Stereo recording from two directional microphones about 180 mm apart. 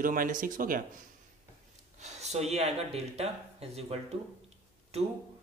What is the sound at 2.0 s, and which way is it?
Speech, 40° right (ahead or behind).